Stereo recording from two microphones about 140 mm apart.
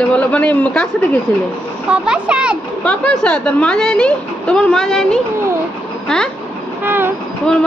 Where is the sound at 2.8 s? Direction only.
5° left (ahead or behind).